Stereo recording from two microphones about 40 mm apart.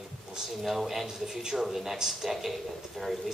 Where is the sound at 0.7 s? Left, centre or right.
Centre.